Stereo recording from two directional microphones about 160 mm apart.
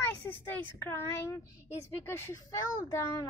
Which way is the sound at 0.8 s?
15° left (ahead or behind).